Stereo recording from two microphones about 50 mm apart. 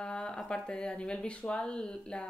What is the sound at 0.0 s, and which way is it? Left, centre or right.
Speech, centre.